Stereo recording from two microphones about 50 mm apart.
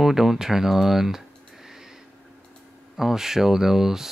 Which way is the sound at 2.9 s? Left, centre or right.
Centre.